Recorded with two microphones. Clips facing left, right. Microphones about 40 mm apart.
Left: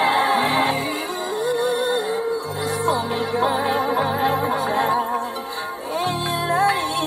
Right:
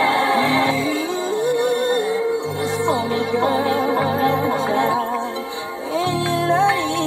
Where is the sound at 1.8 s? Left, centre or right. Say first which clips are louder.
Right 3 dB; right.